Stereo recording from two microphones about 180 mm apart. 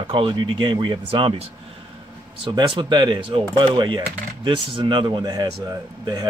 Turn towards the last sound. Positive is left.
turn(degrees=-20)  # may be behind; listen again after turning